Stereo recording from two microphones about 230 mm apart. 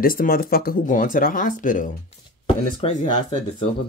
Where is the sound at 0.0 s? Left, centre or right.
Left.